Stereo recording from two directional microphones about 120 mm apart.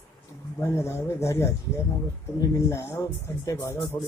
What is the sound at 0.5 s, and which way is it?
Speech, 20° left (ahead or behind).